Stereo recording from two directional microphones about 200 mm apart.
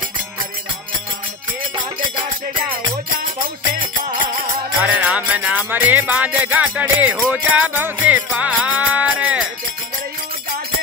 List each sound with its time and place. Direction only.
4.8 s music: 5° right (ahead or behind)